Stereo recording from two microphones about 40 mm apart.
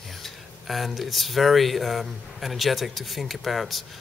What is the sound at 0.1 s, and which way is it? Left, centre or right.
Speech, centre.